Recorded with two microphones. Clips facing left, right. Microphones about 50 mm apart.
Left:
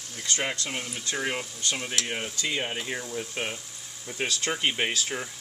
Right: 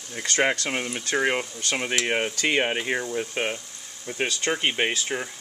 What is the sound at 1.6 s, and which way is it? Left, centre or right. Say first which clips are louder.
Speech: right 5 dB; right.